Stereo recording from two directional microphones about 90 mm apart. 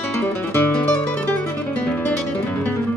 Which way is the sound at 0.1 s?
20° left (ahead or behind).